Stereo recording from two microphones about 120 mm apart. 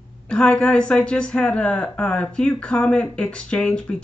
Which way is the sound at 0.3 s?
10° left (ahead or behind).